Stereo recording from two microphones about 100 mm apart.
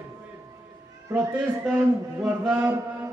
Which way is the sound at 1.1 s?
5° right (ahead or behind).